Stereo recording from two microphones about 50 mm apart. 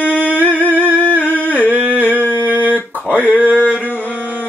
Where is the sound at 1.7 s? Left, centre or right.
Right.